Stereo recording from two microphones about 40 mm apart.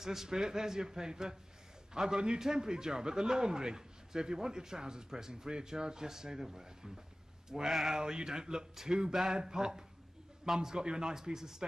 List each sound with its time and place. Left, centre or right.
0.0 s a man's voice: centre